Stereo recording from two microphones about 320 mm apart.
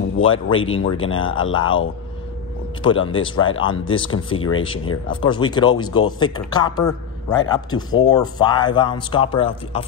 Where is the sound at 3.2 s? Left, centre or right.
Centre.